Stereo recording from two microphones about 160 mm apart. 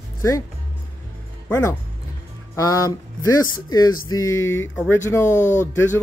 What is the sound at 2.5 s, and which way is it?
Speech, 20° left (ahead or behind).